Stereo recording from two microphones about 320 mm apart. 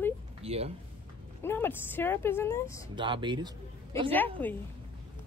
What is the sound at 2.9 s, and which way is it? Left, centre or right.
Speech, centre.